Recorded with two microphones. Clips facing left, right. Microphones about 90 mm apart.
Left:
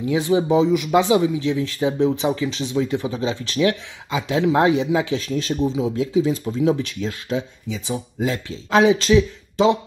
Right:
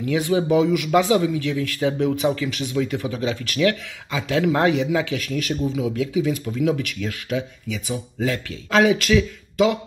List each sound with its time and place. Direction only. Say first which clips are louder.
0.0 s speech: left 2 dB; 25° left (ahead or behind)